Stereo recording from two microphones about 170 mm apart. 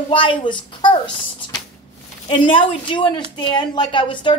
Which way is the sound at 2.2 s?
30° left (ahead or behind).